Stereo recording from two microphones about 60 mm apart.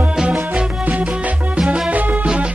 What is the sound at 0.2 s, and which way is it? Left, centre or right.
Music, centre.